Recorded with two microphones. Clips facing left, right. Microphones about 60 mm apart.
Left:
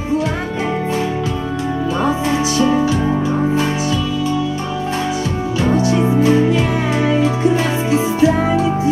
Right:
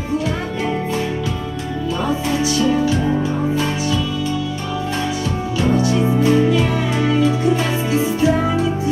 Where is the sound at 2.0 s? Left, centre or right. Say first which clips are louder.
Left 2 dB; left.